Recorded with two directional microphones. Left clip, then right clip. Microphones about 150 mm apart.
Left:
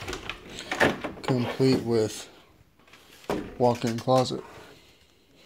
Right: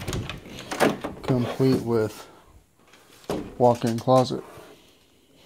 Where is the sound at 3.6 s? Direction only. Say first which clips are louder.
Right 4 dB; 25° right (ahead or behind).